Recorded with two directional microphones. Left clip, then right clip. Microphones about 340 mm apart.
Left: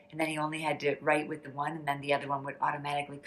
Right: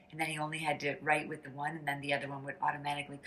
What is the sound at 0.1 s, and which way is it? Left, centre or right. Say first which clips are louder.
A woman's voice: left 4 dB; centre.